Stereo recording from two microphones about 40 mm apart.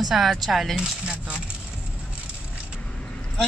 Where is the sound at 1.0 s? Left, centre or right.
Right.